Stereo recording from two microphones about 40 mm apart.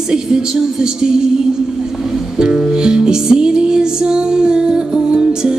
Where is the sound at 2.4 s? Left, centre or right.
Right.